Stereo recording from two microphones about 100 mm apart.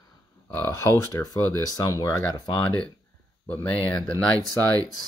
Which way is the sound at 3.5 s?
15° left (ahead or behind).